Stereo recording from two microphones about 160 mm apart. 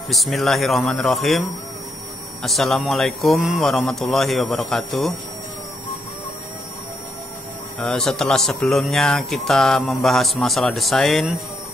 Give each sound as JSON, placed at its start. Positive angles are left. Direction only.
{"t": 0.1, "sound": "speech", "side_deg": 0}
{"t": 2.4, "sound": "speech", "side_deg": 0}
{"t": 7.8, "sound": "speech", "side_deg": 5}